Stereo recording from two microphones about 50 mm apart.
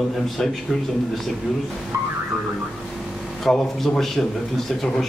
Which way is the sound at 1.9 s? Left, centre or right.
Right.